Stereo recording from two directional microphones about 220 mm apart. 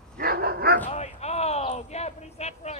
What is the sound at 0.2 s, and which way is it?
Dog, 45° right (ahead or behind).